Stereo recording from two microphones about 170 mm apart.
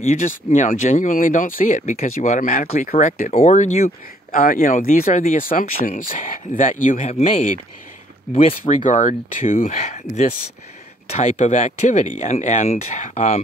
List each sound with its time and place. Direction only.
0.0 s speech: 45° left (ahead or behind)
8.8 s speech: 50° left (ahead or behind)
11.1 s speech: 40° left (ahead or behind)